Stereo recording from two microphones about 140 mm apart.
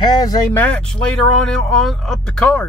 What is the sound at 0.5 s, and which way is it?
Speech, 10° left (ahead or behind).